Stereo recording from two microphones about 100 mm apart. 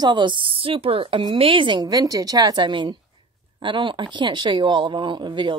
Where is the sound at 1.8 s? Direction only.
40° right (ahead or behind).